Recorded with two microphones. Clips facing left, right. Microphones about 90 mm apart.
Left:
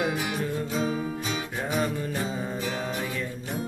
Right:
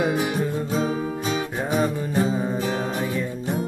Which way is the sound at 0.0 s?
35° right (ahead or behind).